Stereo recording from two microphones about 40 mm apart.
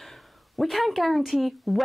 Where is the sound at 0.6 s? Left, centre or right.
Centre.